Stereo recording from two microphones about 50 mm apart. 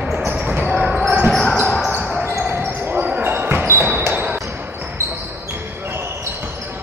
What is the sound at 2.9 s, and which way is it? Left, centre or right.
Basketball bounce, right.